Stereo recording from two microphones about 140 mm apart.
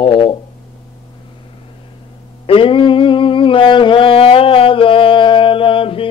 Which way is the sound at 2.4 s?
40° left (ahead or behind).